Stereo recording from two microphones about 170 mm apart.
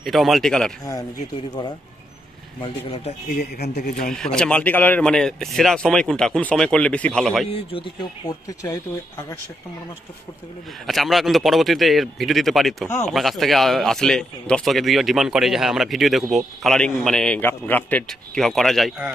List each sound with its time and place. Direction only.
0.0 s speech: centre (ahead or behind)
2.6 s speech: 35° left (ahead or behind)
3.3 s speech: 65° left (ahead or behind)
4.1 s speech: 5° left (ahead or behind)
7.4 s speech: 35° left (ahead or behind)
10.9 s speech: centre (ahead or behind)
12.8 s speech: 15° left (ahead or behind)
13.1 s speech: centre (ahead or behind)